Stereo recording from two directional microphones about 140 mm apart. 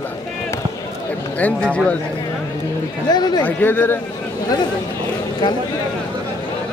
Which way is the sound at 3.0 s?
30° left (ahead or behind).